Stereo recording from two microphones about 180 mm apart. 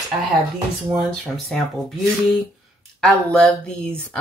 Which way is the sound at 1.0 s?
5° left (ahead or behind).